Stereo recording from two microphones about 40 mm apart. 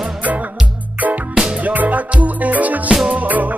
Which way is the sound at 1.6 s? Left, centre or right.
Right.